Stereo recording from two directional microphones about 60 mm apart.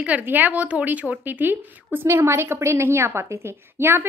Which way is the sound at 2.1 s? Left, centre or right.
Right.